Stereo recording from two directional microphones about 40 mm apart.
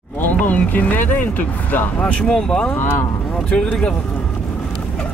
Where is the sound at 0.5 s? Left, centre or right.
Left.